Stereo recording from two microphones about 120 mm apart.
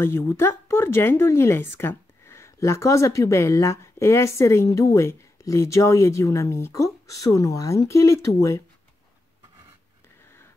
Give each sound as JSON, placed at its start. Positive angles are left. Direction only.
{"t": 0.0, "sound": "speech", "side_deg": 20}